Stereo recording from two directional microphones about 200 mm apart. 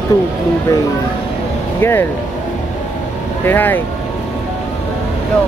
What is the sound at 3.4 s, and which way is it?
Speech, 10° left (ahead or behind).